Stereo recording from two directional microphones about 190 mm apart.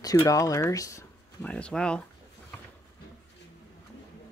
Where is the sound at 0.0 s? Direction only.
20° left (ahead or behind).